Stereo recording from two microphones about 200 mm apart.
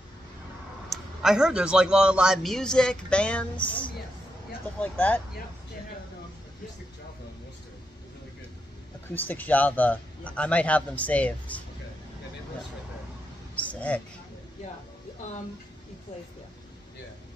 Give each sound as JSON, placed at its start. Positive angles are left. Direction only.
{"t": 0.8, "sound": "a man's voice", "side_deg": -5}
{"t": 4.7, "sound": "a man's voice", "side_deg": 10}
{"t": 9.1, "sound": "a man's voice", "side_deg": 10}
{"t": 13.6, "sound": "speech", "side_deg": 5}